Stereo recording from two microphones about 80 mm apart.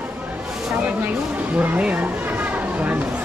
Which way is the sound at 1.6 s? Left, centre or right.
Centre.